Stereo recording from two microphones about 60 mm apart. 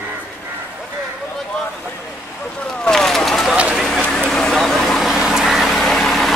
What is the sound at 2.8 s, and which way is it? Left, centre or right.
Vehicle, centre.